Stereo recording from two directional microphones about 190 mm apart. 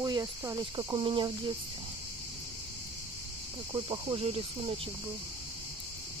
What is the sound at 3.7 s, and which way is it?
Speech, 25° right (ahead or behind).